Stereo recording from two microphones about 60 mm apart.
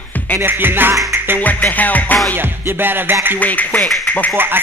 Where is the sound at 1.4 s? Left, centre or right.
Left.